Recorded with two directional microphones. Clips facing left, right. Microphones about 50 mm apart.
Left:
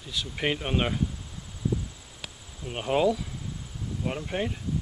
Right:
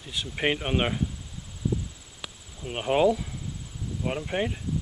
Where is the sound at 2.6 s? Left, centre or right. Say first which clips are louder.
Right 2 dB; centre.